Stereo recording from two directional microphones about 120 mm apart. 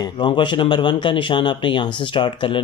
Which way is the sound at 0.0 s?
40° left (ahead or behind).